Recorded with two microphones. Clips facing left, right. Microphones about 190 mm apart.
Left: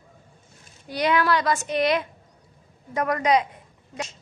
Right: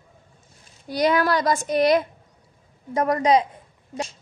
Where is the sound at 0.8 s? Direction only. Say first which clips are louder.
Right 2 dB; 40° right (ahead or behind).